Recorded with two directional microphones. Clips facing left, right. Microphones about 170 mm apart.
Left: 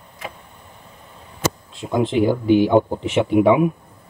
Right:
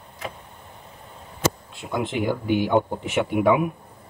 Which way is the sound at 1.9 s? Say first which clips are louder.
Left 7 dB; 30° left (ahead or behind).